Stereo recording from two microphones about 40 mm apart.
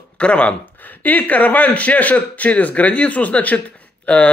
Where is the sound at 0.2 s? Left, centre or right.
Left.